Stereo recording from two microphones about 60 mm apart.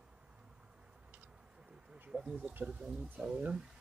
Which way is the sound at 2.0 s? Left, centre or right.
Centre.